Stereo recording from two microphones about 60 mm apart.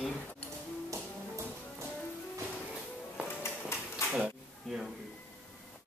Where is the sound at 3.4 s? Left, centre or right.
Left.